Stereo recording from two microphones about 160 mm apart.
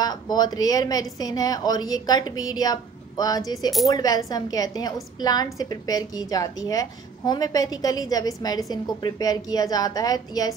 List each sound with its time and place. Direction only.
0.0 s a woman's voice: 25° left (ahead or behind)